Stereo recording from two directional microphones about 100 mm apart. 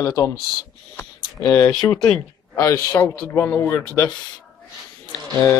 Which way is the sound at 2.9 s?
20° left (ahead or behind).